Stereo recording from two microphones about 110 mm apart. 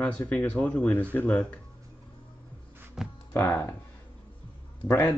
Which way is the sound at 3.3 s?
15° left (ahead or behind).